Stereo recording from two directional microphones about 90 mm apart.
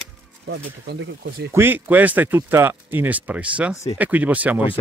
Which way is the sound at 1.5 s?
20° right (ahead or behind).